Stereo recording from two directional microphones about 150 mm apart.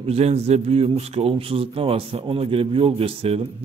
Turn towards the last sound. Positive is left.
turn(degrees=-40)  # may be behind; listen again after turning